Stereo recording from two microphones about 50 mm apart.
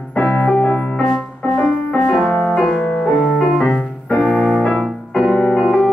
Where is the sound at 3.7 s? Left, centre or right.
Left.